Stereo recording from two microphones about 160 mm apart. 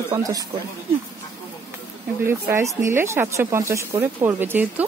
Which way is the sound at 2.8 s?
15° right (ahead or behind).